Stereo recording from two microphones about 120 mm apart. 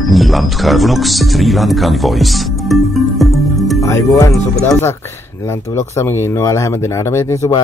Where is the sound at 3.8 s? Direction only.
25° left (ahead or behind).